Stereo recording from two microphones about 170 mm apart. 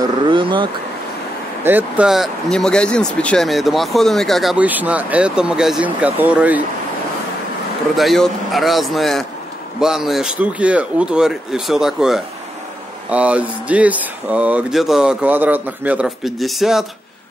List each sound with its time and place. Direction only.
0.0 s speech: 25° right (ahead or behind)
1.6 s speech: 10° right (ahead or behind)
7.9 s speech: centre (ahead or behind)